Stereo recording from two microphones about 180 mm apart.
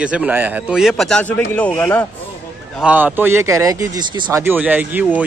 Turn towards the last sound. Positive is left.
turn(degrees=-10)  # may be behind; listen again after turning